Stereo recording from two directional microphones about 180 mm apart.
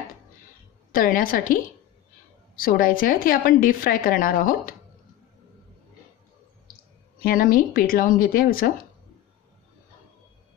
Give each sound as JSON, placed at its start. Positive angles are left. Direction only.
{"t": 0.9, "sound": "a woman's voice", "side_deg": 50}
{"t": 7.2, "sound": "a woman's voice", "side_deg": 55}